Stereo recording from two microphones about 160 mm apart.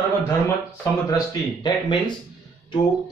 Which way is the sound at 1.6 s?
30° left (ahead or behind).